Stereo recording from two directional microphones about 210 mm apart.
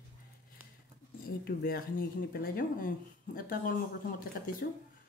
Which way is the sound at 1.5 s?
45° left (ahead or behind).